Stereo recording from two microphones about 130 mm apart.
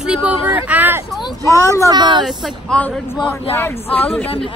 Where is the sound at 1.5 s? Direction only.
25° left (ahead or behind).